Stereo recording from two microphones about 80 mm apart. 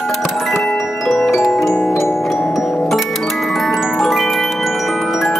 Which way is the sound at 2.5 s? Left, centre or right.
Centre.